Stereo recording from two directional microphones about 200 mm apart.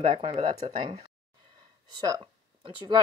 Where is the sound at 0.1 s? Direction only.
25° right (ahead or behind).